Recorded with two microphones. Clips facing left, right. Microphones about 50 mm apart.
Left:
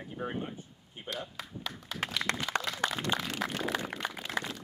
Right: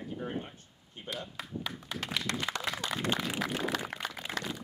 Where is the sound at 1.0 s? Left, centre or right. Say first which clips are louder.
Left 1 dB; centre.